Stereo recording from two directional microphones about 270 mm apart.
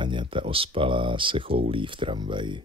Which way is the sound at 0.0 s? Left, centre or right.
Centre.